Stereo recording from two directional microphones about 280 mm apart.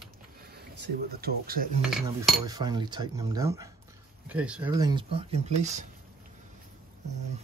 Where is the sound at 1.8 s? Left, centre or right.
Centre.